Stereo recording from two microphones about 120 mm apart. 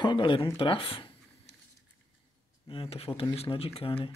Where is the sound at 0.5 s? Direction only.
50° left (ahead or behind).